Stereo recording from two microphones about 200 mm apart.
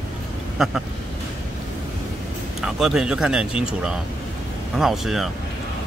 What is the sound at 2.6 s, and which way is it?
Speech, centre (ahead or behind).